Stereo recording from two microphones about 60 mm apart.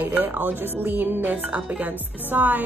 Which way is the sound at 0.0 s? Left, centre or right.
Right.